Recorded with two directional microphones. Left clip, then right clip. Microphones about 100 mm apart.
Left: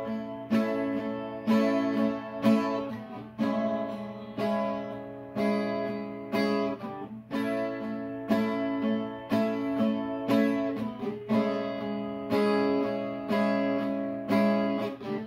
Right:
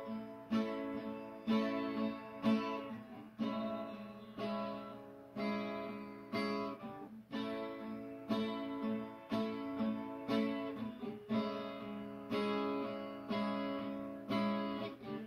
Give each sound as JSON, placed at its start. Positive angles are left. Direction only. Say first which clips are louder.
{"t": 0.5, "sound": "music", "louder": "left 11 dB", "side_deg": 20}